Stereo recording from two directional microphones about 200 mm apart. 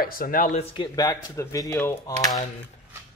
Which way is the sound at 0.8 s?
20° left (ahead or behind).